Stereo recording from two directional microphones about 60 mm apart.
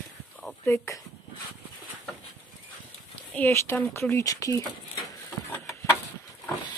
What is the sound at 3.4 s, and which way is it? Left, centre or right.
Speech, left.